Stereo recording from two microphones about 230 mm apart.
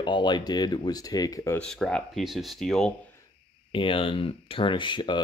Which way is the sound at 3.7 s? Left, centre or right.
Left.